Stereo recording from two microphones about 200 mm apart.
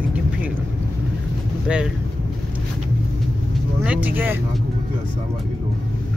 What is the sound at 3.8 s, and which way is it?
Vehicle, 5° right (ahead or behind).